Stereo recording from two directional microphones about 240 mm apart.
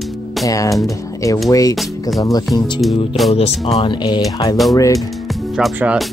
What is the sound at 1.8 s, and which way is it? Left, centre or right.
Speech, centre.